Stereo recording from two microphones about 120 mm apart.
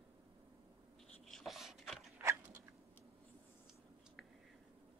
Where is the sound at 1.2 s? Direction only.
Centre (ahead or behind).